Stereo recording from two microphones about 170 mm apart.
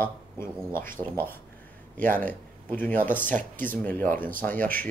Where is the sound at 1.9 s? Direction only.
55° right (ahead or behind).